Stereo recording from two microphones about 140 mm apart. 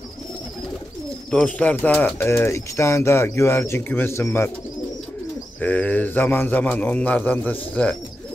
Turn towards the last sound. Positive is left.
turn(degrees=10)  # may be behind; listen again after turning